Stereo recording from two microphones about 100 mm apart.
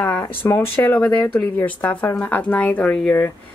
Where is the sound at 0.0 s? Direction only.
20° left (ahead or behind).